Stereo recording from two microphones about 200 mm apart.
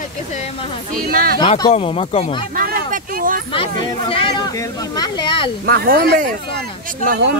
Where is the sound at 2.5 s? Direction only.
45° right (ahead or behind).